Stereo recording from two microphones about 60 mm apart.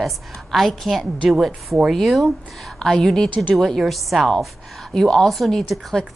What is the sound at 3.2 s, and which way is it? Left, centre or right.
Speech, left.